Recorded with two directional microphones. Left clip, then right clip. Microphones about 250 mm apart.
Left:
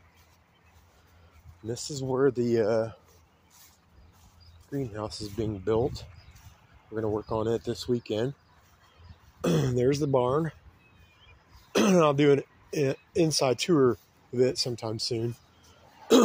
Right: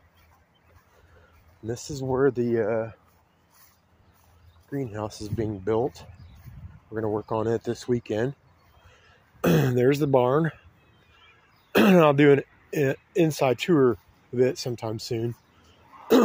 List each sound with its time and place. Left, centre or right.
1.6 s speech: centre
4.6 s speech: centre
9.4 s speech: right
11.7 s speech: right
16.1 s cough: centre